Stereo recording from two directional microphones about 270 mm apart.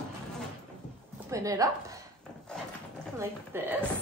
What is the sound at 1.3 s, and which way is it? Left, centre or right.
Speech, centre.